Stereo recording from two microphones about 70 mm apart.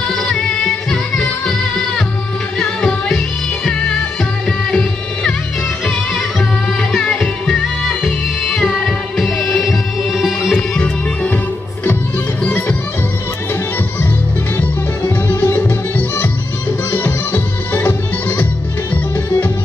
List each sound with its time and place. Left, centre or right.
0.1 s music: centre
2.6 s music: centre
4.5 s music: centre
6.8 s music: centre
10.7 s music: centre
15.0 s music: left